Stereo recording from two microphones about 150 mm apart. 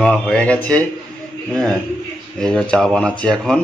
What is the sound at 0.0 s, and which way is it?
A man's voice, 5° left (ahead or behind).